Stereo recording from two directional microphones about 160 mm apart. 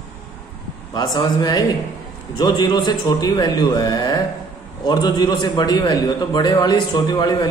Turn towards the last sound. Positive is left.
turn(degrees=25)  # may be behind; listen again after turning